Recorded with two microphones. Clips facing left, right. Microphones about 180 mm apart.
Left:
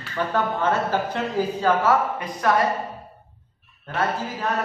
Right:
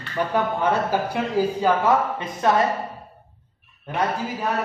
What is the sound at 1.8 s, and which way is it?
Speech, 25° right (ahead or behind).